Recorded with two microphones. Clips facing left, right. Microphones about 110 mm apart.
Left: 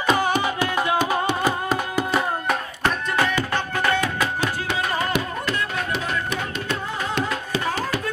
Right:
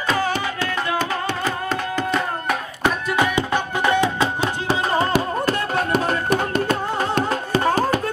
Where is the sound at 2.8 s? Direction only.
15° right (ahead or behind); by 8.0 s 35° right (ahead or behind).